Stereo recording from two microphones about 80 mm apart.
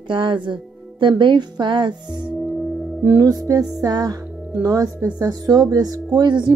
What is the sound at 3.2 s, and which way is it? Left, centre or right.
Speech, right.